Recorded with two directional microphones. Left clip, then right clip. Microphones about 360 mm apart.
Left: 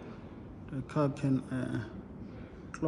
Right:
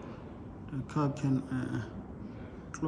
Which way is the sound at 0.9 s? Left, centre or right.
Centre.